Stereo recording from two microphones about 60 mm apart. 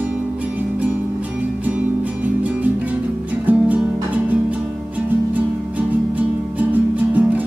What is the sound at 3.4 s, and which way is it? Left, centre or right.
Music, right.